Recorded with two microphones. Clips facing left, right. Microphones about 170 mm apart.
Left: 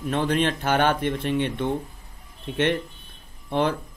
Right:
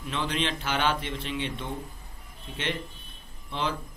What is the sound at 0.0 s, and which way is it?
Speech, 50° left (ahead or behind).